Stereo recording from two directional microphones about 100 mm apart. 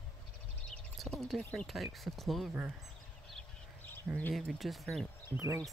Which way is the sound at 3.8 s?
20° left (ahead or behind).